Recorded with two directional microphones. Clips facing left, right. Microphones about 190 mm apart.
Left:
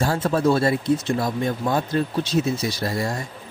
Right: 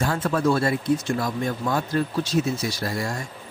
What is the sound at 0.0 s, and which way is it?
A man's voice, 30° left (ahead or behind).